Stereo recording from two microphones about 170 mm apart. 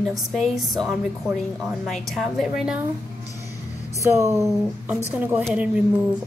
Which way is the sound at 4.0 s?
20° right (ahead or behind).